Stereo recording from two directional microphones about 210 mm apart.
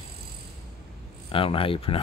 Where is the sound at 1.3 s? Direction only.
25° left (ahead or behind).